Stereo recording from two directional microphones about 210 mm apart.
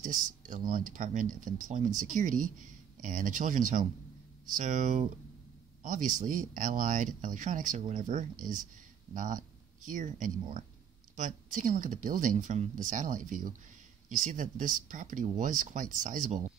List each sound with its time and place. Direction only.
0.0 s speech: 40° right (ahead or behind)